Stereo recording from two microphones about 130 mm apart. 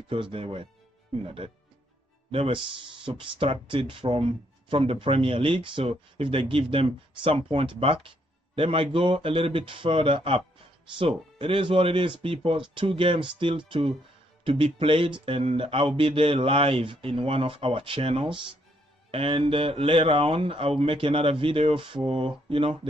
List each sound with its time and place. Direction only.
0.1 s speech: 45° right (ahead or behind)